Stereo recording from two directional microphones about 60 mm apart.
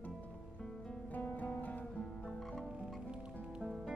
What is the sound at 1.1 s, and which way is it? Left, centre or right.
Music, left.